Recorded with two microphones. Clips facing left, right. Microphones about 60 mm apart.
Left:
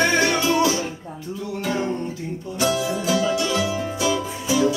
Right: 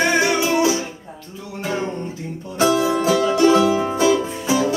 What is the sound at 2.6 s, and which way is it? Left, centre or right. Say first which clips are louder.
Music: right 6 dB; right.